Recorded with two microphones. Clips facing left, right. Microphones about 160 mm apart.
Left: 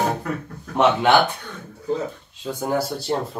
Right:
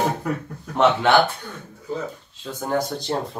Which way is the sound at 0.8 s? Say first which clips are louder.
Even; 15° left (ahead or behind).